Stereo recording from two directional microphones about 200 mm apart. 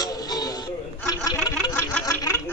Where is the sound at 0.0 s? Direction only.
20° left (ahead or behind).